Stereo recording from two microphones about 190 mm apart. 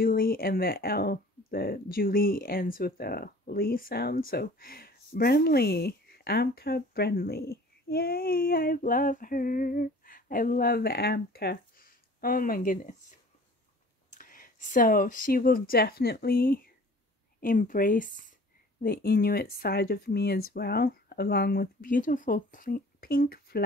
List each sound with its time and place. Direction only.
0.0 s speech: 50° left (ahead or behind)
14.1 s speech: 45° left (ahead or behind)